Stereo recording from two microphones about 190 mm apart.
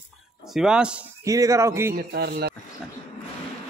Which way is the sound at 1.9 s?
55° right (ahead or behind).